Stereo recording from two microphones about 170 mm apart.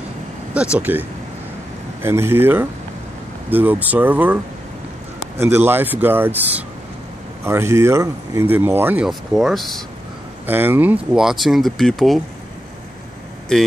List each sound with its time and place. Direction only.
0.7 s speech: 10° right (ahead or behind)
5.4 s speech: 15° right (ahead or behind)
10.4 s speech: 10° right (ahead or behind)